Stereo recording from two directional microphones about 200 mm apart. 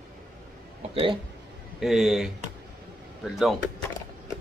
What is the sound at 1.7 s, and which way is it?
Speech, centre (ahead or behind).